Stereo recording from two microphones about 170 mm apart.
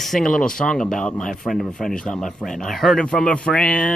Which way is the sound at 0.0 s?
Centre (ahead or behind).